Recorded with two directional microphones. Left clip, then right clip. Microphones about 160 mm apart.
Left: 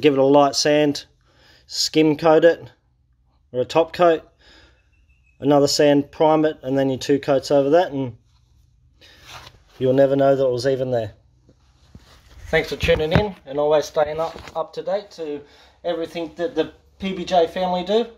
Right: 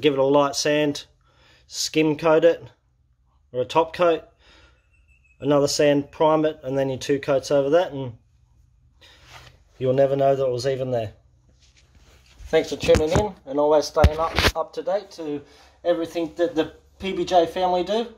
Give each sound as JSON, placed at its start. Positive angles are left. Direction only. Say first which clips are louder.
{"t": 0.0, "sound": "speech", "louder": "left 4 dB", "side_deg": 30}
{"t": 9.0, "sound": "a sound", "louder": "left 2 dB", "side_deg": 30}
{"t": 9.8, "sound": "speech", "louder": "left 3 dB", "side_deg": 30}
{"t": 12.4, "sound": "speech", "louder": "even", "side_deg": 25}
{"t": 13.0, "sound": "speech", "louder": "left 1 dB", "side_deg": -5}
{"t": 14.1, "sound": "speech", "louder": "right 3 dB", "side_deg": 10}